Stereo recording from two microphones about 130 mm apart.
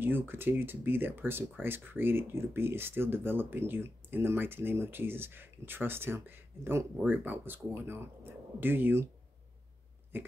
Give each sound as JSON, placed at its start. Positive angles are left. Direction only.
{"t": 0.0, "sound": "speech", "side_deg": -15}